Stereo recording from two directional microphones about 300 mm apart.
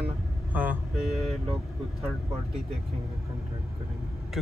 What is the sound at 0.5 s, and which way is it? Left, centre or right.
Vehicle, centre.